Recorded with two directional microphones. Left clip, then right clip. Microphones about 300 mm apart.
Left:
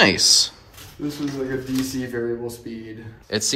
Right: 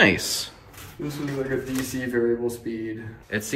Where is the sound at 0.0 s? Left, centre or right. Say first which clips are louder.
Left 4 dB; centre.